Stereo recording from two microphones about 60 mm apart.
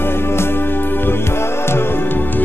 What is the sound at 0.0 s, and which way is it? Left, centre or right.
Music, left.